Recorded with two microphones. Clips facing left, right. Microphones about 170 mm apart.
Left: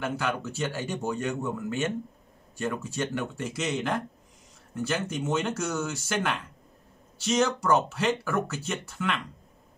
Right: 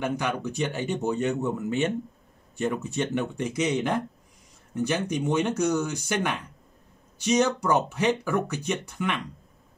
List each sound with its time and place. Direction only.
0.0 s speech: 15° right (ahead or behind)
5.0 s speech: 15° right (ahead or behind)